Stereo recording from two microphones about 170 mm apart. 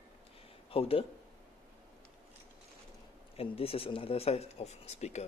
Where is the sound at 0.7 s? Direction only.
35° left (ahead or behind).